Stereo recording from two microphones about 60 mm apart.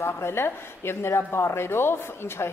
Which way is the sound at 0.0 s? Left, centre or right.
Left.